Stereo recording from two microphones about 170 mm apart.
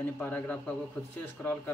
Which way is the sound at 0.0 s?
10° left (ahead or behind).